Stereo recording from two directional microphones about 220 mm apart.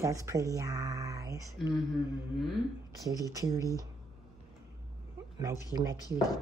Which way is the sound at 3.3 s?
15° right (ahead or behind).